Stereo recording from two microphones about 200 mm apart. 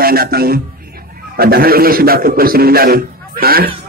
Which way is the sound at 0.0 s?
50° right (ahead or behind).